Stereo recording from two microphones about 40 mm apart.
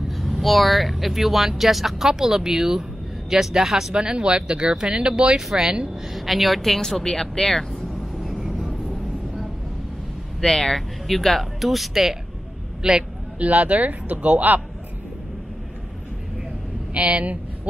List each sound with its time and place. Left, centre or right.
0.4 s speech: centre
3.9 s speech: right
6.1 s speech: centre
7.9 s vehicle: centre
10.4 s speech: centre
13.4 s speech: right
16.9 s speech: right